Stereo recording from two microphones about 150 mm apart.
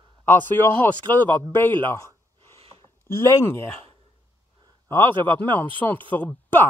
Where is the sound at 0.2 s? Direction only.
15° left (ahead or behind).